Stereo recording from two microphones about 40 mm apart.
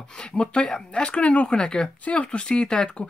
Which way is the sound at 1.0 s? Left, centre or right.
Left.